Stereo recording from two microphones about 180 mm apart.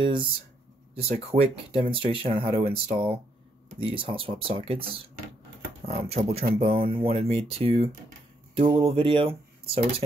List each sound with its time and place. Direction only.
0.0 s speech: 25° right (ahead or behind)